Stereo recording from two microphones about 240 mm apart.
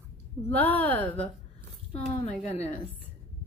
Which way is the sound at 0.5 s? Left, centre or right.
Centre.